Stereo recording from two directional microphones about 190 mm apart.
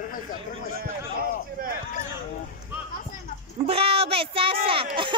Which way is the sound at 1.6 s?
50° right (ahead or behind).